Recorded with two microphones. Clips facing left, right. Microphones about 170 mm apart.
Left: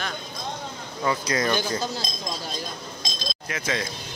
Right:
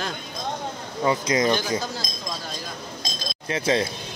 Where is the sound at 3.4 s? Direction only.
30° right (ahead or behind).